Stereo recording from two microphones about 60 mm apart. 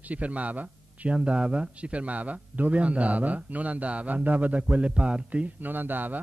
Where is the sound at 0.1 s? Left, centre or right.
Right.